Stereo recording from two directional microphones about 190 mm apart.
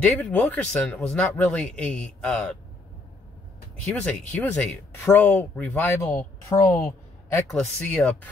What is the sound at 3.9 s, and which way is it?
Speech, 5° left (ahead or behind).